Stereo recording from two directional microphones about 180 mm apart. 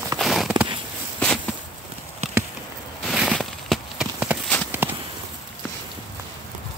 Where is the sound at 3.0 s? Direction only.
Centre (ahead or behind).